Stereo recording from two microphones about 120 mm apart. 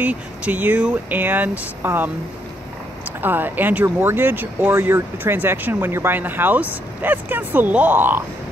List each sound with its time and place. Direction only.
0.0 s speech: 15° right (ahead or behind)
3.2 s speech: 15° right (ahead or behind)